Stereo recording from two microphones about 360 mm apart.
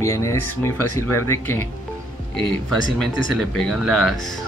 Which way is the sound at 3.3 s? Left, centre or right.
Centre.